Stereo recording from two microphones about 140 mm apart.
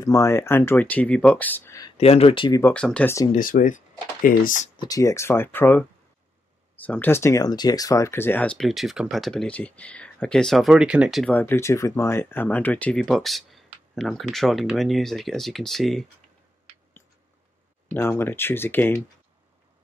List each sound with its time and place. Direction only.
0.0 s speech: 20° left (ahead or behind)
1.7 s a sound: 25° left (ahead or behind)
2.0 s speech: 45° left (ahead or behind)
2.7 s speech: 10° left (ahead or behind)
3.3 s speech: 75° left (ahead or behind)
4.7 s speech: 25° left (ahead or behind); by 11.3 s centre (ahead or behind)
11.3 s speech: 15° left (ahead or behind)
17.9 s speech: 15° left (ahead or behind)